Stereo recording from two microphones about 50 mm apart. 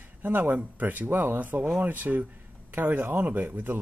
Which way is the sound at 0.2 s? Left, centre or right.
Right.